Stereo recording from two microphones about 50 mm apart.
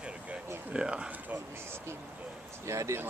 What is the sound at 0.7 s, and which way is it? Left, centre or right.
Speech, centre.